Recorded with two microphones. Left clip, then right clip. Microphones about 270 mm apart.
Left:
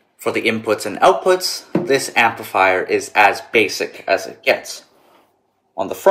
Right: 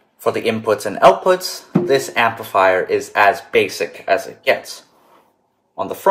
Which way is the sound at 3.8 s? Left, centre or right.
Centre.